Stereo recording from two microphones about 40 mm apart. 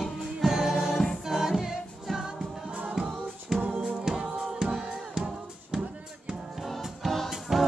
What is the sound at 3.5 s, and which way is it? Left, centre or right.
Music, centre.